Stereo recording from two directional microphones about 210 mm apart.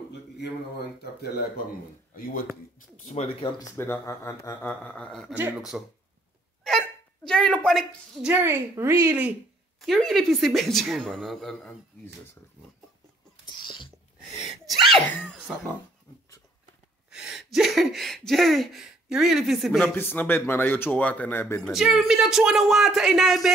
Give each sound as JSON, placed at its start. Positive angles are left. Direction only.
{"t": 3.1, "sound": "speech", "side_deg": 25}
{"t": 3.5, "sound": "speech", "side_deg": 15}
{"t": 5.3, "sound": "a woman's voice", "side_deg": -10}
{"t": 6.7, "sound": "hiccup", "side_deg": 0}
{"t": 7.2, "sound": "a woman's voice", "side_deg": 5}
{"t": 13.6, "sound": "a sound", "side_deg": 25}
{"t": 14.9, "sound": "speech", "side_deg": 0}
{"t": 17.1, "sound": "a sound", "side_deg": -5}
{"t": 20.0, "sound": "speech", "side_deg": 10}
{"t": 21.7, "sound": "speech", "side_deg": 0}